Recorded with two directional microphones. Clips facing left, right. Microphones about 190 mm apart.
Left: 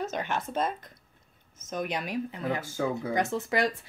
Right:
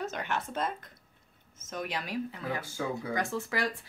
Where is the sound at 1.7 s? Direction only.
20° left (ahead or behind).